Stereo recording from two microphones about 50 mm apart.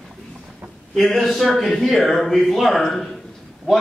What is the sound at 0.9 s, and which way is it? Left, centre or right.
A man's voice, centre.